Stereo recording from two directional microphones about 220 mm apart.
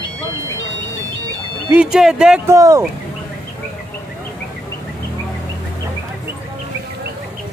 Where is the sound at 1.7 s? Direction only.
5° right (ahead or behind).